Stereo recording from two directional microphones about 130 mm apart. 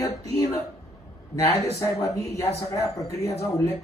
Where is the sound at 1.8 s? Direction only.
25° left (ahead or behind).